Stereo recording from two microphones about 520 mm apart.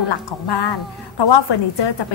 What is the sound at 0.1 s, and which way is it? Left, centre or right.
A woman's voice, left.